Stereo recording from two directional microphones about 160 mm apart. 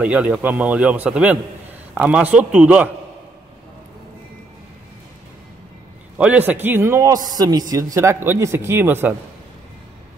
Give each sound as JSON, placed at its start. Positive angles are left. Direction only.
{"t": 0.0, "sound": "a man's voice", "side_deg": -10}
{"t": 6.1, "sound": "a man's voice", "side_deg": -10}